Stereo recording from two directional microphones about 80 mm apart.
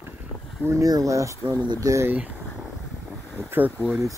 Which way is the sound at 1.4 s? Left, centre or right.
Centre.